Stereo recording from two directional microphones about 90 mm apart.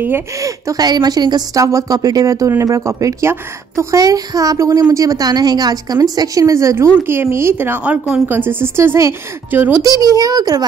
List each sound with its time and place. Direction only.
0.4 s a woman's voice: 40° right (ahead or behind); by 9.8 s 20° right (ahead or behind)
9.8 s a woman's voice: 40° right (ahead or behind)